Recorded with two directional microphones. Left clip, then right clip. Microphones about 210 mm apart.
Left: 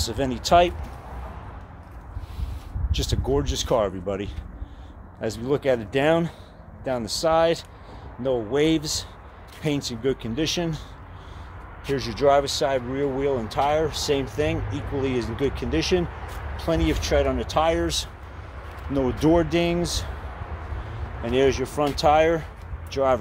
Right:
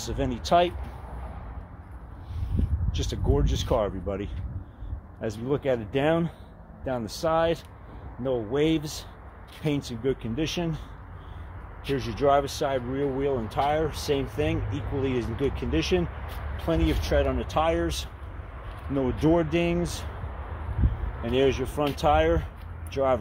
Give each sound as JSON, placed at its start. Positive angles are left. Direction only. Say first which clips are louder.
{"t": 0.0, "sound": "speech", "louder": "left 5 dB", "side_deg": 0}
{"t": 2.9, "sound": "speech", "louder": "left 4 dB", "side_deg": 0}
{"t": 12.0, "sound": "speech", "louder": "left 3 dB", "side_deg": -10}
{"t": 21.2, "sound": "speech", "louder": "left 3 dB", "side_deg": -5}